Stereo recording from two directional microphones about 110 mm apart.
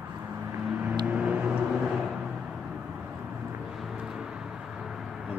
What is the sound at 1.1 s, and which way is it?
Vehicle, 10° right (ahead or behind).